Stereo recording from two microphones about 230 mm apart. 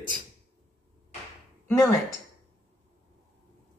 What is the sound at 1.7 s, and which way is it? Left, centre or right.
Speech, centre.